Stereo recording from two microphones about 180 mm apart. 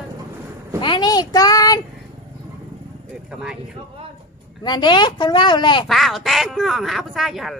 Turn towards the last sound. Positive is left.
turn(degrees=0)  # may be behind; listen again after turning